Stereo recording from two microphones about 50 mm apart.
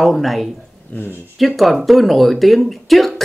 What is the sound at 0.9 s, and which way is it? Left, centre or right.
Mantra, left.